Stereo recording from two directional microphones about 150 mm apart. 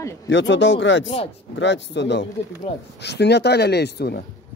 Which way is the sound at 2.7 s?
35° left (ahead or behind).